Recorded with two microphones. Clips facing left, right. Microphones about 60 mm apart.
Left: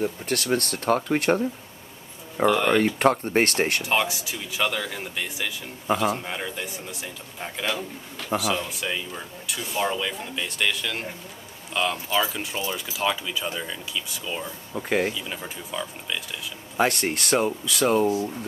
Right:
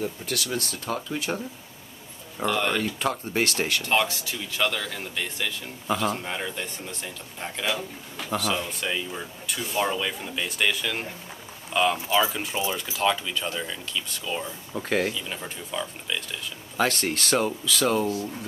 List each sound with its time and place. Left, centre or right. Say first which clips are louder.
0.2 s speech: left 5 dB; left
2.4 s speech: left 5 dB; centre
2.8 s speech: left 7 dB; left
3.8 s speech: even; centre
7.6 s speech: even; centre
8.4 s speech: left 1 dB; centre
16.7 s speech: left 2 dB; left